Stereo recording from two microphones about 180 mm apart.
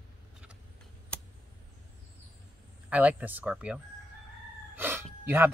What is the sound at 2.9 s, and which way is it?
Speech, 5° right (ahead or behind).